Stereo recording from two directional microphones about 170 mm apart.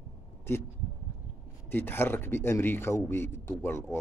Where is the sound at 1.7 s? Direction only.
10° left (ahead or behind).